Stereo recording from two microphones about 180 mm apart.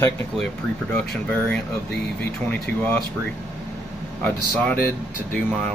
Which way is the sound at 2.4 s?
10° left (ahead or behind).